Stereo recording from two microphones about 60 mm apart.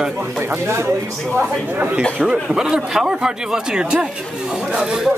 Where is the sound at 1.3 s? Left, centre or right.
Right.